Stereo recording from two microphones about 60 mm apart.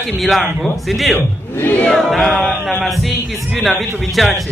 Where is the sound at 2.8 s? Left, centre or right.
Centre.